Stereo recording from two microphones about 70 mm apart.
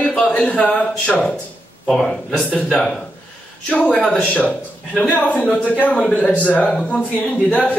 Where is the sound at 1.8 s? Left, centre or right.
Centre.